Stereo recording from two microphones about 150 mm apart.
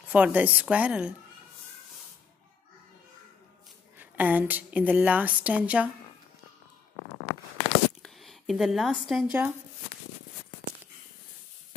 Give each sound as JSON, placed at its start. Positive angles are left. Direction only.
{"t": 0.1, "sound": "a woman's voice", "side_deg": -10}
{"t": 4.0, "sound": "a woman's voice", "side_deg": -10}
{"t": 7.6, "sound": "a sound", "side_deg": 45}
{"t": 8.0, "sound": "a woman's voice", "side_deg": 0}